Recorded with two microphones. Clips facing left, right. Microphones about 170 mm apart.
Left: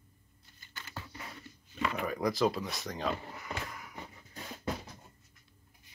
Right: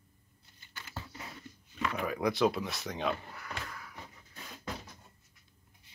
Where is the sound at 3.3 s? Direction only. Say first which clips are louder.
Left 2 dB; 15° left (ahead or behind).